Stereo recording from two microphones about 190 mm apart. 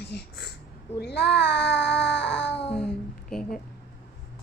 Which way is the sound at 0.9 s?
60° left (ahead or behind).